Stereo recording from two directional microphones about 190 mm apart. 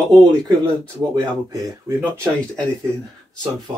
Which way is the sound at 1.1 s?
20° right (ahead or behind).